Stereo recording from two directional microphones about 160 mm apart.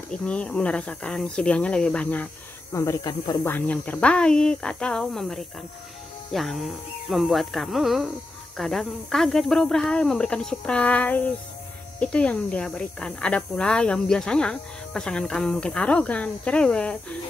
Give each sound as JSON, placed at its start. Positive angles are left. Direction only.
{"t": 0.1, "sound": "speech", "side_deg": 5}
{"t": 3.4, "sound": "speech", "side_deg": 10}